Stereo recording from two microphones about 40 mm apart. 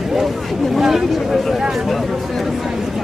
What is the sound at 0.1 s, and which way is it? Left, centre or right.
Speech, centre.